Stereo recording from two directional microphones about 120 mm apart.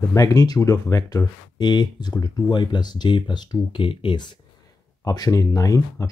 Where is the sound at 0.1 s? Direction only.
30° left (ahead or behind).